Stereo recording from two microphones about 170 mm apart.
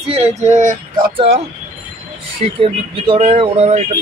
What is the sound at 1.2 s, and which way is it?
Speech, 35° right (ahead or behind).